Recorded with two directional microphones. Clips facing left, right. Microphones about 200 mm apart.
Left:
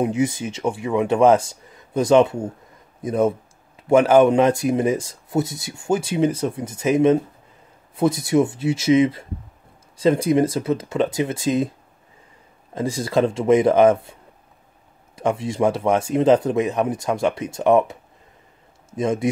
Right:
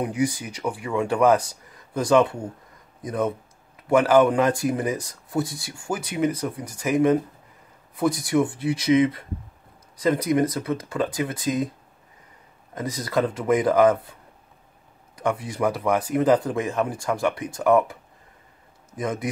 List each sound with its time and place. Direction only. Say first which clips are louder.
0.0 s speech: left 4 dB; 25° left (ahead or behind)
12.7 s speech: left 4 dB; 30° left (ahead or behind)
15.1 s a man's voice: left 4 dB; 25° left (ahead or behind)